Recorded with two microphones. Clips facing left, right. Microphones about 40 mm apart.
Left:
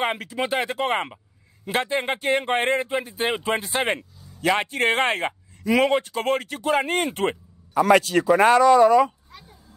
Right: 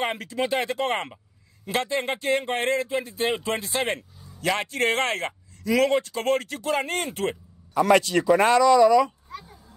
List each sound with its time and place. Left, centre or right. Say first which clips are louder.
0.1 s a man's voice: left 1 dB; centre
7.0 s speech: left 4 dB; left
7.9 s a man's voice: left 1 dB; centre